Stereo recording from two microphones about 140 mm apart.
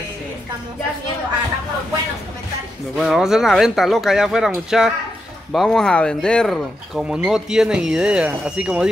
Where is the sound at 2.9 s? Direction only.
Centre (ahead or behind).